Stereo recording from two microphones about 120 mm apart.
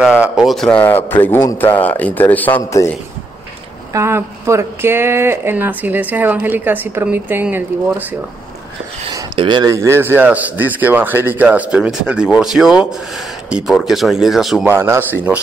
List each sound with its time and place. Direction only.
0.0 s a man's voice: 5° right (ahead or behind); by 2.6 s 15° left (ahead or behind)
3.9 s speech: 25° right (ahead or behind)
9.1 s speech: 40° right (ahead or behind)
9.8 s speech: 20° right (ahead or behind); by 14.7 s centre (ahead or behind)
14.7 s speech: 20° right (ahead or behind)